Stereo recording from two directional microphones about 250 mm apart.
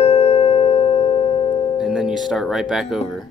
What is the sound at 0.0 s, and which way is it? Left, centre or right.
Music, left.